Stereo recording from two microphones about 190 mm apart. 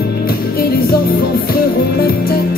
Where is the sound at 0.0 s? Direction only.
50° left (ahead or behind).